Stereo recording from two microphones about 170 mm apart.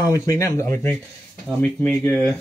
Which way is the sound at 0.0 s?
20° left (ahead or behind).